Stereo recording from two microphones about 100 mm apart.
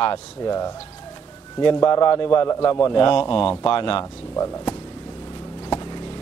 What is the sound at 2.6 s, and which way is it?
Speech, 35° left (ahead or behind).